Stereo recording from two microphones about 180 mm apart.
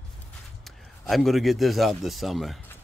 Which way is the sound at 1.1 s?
Centre (ahead or behind).